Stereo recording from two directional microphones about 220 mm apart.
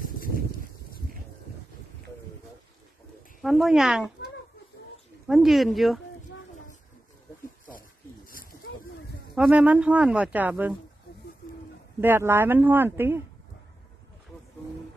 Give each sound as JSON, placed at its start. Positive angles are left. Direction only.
{"t": 3.3, "sound": "speech", "side_deg": 0}
{"t": 5.3, "sound": "speech", "side_deg": 0}
{"t": 8.3, "sound": "a sound", "side_deg": 40}
{"t": 9.3, "sound": "speech", "side_deg": -5}
{"t": 12.0, "sound": "speech", "side_deg": -10}